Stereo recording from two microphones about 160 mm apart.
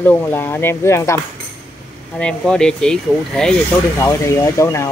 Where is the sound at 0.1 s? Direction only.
15° left (ahead or behind).